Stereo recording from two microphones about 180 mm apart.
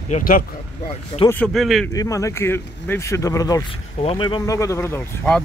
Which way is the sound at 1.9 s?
20° left (ahead or behind).